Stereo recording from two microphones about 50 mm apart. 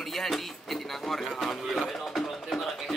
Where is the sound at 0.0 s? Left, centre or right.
Centre.